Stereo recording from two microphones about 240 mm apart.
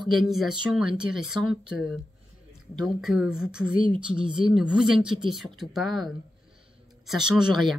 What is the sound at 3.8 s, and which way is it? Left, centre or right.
Speech, right.